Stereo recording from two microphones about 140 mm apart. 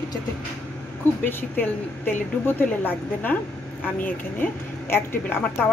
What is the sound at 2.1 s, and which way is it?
Speech, 15° left (ahead or behind).